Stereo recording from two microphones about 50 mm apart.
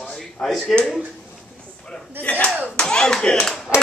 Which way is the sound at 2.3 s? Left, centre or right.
Left.